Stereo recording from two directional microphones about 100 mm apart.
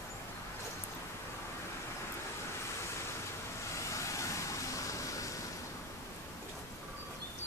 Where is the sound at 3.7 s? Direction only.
30° left (ahead or behind).